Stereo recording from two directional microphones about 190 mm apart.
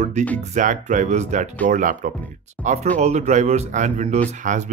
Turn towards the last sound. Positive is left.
turn(degrees=-40)  # may be behind; listen again after turning